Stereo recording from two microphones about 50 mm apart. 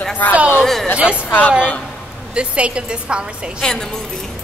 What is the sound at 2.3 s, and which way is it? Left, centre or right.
A woman's voice, right.